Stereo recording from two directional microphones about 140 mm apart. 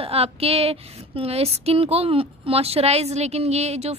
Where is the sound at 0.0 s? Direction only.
45° right (ahead or behind).